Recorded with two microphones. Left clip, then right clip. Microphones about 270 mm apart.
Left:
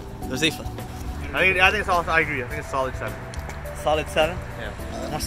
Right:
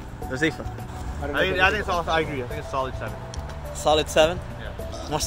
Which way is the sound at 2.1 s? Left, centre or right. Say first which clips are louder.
Left 3 dB; centre.